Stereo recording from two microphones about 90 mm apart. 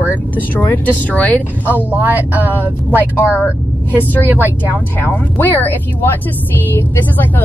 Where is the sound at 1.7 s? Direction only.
20° right (ahead or behind).